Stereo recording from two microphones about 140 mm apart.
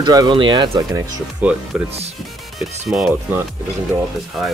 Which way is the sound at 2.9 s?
5° right (ahead or behind).